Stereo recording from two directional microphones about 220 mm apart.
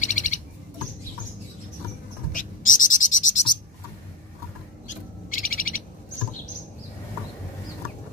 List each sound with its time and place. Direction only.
0.0 s bird: 35° left (ahead or behind)
2.3 s owl: 35° left (ahead or behind)
4.8 s owl: 40° left (ahead or behind)